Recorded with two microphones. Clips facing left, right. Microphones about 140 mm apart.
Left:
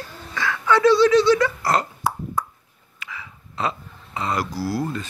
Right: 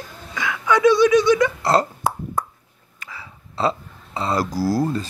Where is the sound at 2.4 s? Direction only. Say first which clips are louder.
Right 1 dB; 50° right (ahead or behind).